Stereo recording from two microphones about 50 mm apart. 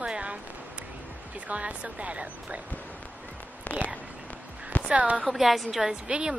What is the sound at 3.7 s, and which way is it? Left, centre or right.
Speech, left.